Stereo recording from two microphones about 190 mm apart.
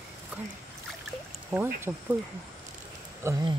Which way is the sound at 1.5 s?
10° right (ahead or behind).